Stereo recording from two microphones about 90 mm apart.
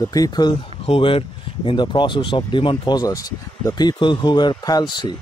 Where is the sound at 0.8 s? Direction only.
90° left.